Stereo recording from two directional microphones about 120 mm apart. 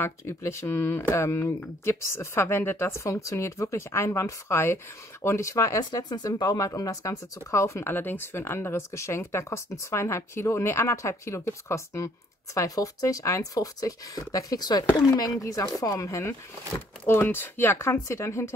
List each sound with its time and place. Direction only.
0.0 s speech: 20° left (ahead or behind)